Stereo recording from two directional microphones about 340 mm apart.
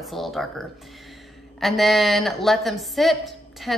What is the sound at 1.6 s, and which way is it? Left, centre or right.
Speech, centre.